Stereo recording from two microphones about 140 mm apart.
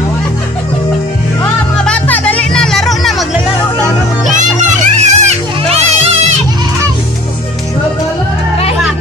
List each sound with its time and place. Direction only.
1.4 s music: 10° left (ahead or behind)
4.4 s children playing: 60° right (ahead or behind)